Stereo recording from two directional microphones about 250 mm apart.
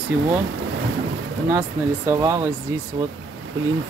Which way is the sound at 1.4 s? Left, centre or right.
Centre.